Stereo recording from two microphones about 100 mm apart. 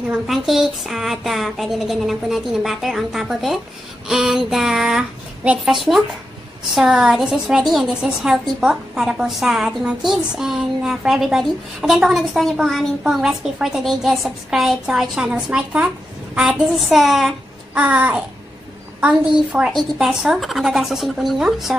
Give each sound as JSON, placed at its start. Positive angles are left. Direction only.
{"t": 0.1, "sound": "a woman's voice", "side_deg": -5}
{"t": 17.7, "sound": "a woman's voice", "side_deg": -15}